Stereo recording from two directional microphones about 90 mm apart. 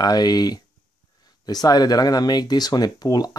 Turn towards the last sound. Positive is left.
turn(degrees=45)  # may be behind; listen again after turning